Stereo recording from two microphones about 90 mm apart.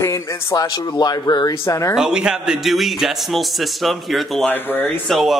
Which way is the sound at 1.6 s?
35° left (ahead or behind).